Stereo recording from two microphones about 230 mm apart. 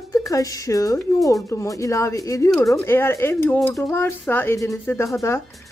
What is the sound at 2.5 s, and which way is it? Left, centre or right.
Speech, centre.